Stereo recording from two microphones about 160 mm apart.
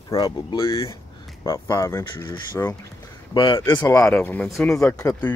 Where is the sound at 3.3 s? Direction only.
30° left (ahead or behind).